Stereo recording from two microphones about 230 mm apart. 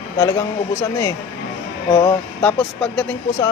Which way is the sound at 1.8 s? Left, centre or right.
Centre.